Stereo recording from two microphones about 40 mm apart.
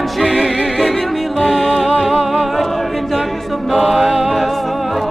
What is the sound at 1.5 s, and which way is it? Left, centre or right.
Music, centre.